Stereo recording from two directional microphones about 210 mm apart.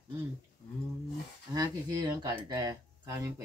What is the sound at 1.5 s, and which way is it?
Speech, 20° right (ahead or behind).